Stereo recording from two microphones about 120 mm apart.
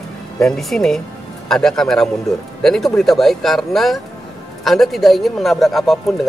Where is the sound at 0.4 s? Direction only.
5° left (ahead or behind).